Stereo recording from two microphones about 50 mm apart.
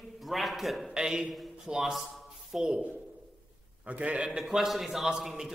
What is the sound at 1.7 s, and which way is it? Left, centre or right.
Speech, right.